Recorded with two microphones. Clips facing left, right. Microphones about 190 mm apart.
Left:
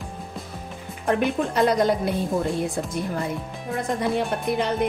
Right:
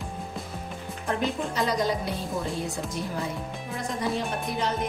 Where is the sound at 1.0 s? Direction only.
60° left (ahead or behind).